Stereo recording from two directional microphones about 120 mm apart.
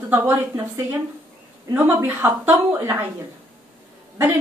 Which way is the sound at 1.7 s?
15° right (ahead or behind).